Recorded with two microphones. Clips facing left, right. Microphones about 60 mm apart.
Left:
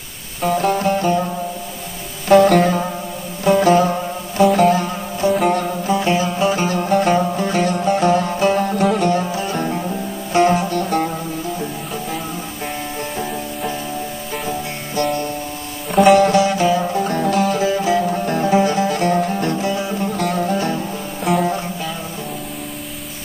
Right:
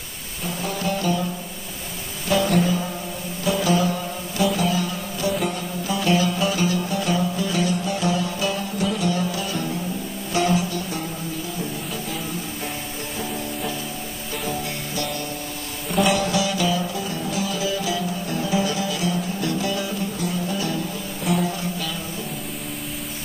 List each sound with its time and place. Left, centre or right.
0.4 s music: left
2.2 s music: left
5.4 s music: left
5.9 s music: left
9.1 s music: left
16.1 s music: left
19.7 s music: left
20.0 s music: left
21.2 s music: centre